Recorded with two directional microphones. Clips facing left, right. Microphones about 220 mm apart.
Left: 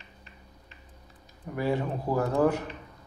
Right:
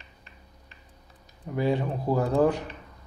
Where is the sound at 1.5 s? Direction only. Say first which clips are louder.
Right 2 dB; 15° right (ahead or behind).